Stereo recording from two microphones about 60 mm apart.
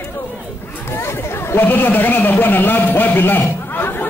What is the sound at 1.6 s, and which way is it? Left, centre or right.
A man's voice, left.